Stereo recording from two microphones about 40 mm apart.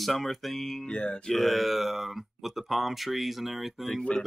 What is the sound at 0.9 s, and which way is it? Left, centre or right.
Mantra, left.